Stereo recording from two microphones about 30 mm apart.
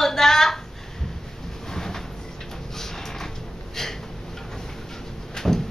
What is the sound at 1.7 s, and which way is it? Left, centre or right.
Train, centre.